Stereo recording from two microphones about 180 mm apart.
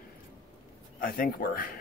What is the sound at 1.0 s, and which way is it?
Speech, 50° left (ahead or behind).